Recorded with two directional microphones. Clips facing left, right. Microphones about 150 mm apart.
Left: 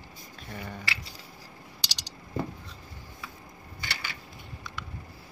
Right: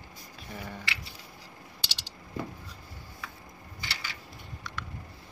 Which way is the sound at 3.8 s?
55° left (ahead or behind).